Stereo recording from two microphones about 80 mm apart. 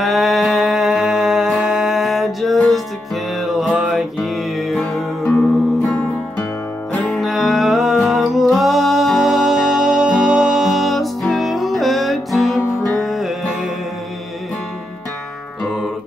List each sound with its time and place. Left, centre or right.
0.0 s music: centre
5.3 s music: centre
7.2 s music: centre